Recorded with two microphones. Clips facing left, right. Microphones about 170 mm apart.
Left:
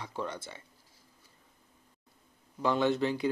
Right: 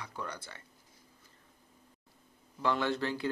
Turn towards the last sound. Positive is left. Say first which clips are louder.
# left 5 dB
turn(degrees=20)  # may be behind; listen again after turning